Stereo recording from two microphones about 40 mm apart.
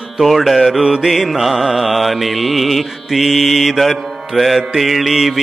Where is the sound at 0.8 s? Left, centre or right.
Centre.